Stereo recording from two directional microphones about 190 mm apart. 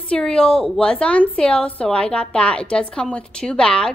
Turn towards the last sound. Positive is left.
turn(degrees=5)  # may be behind; listen again after turning